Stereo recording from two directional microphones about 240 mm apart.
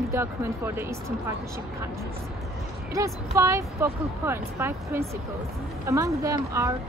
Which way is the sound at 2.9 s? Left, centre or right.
Centre.